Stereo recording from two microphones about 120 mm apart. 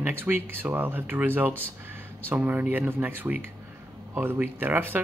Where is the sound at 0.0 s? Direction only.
15° right (ahead or behind).